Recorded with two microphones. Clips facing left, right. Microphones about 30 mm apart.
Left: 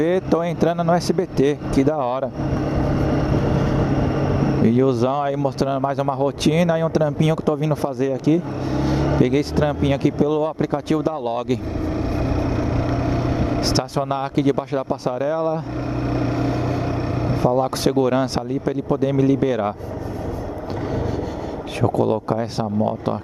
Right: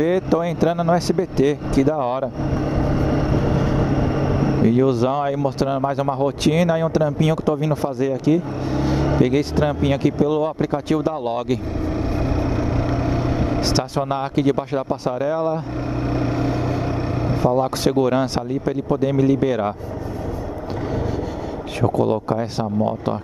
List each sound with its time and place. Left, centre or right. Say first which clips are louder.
0.0 s speech: even; centre
2.7 s vehicle: even; centre
4.6 s speech: even; centre
5.1 s speech: even; centre
13.0 s vehicle: even; centre
14.3 s speech: even; centre
14.8 s speech: even; centre
16.2 s vehicle: even; centre
17.4 s speech: even; centre
21.8 s speech: even; centre